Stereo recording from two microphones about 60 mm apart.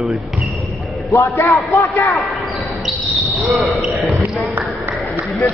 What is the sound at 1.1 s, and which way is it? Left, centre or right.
Speech, left.